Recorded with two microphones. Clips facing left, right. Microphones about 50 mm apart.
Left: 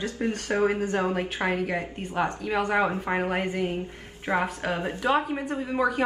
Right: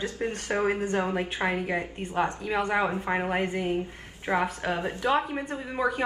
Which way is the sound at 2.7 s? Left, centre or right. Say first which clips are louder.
Left 2 dB; centre.